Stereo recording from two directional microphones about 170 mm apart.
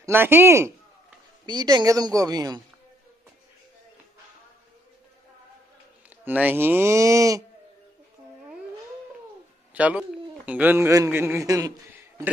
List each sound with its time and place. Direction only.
0.0 s speech: 15° right (ahead or behind)
1.4 s speech: 25° right (ahead or behind)
6.0 s speech: 10° right (ahead or behind)
9.8 s speech: 10° right (ahead or behind)